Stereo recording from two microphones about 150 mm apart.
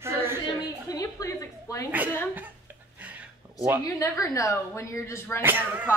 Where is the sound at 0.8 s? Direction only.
25° left (ahead or behind).